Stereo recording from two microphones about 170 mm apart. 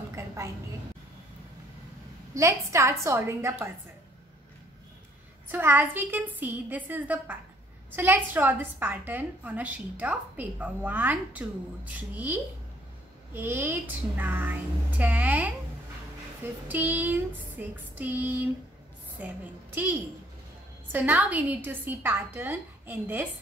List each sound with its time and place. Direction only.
2.3 s a woman's voice: 15° right (ahead or behind)
5.5 s a woman's voice: 10° right (ahead or behind)
16.6 s a woman's voice: 10° right (ahead or behind)